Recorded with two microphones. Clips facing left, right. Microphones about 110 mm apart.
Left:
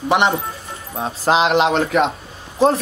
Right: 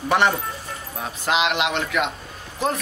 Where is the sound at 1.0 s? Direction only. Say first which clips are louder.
Left 6 dB; 30° left (ahead or behind).